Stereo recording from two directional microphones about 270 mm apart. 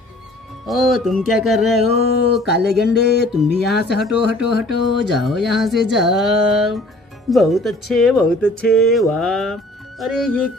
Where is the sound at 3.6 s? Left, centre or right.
Left.